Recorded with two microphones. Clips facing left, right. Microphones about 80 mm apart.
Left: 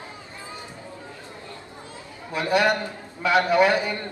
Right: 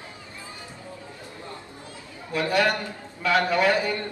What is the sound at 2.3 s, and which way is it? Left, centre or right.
A man's voice, left.